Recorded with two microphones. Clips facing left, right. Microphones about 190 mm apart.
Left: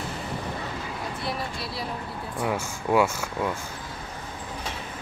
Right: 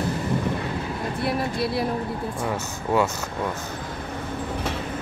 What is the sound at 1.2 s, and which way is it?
Vehicle, 60° right (ahead or behind).